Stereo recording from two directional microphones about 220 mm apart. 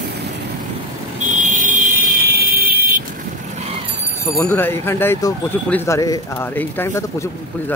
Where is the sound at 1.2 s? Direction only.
35° right (ahead or behind).